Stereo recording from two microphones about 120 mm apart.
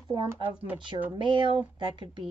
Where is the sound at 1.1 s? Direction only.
45° right (ahead or behind).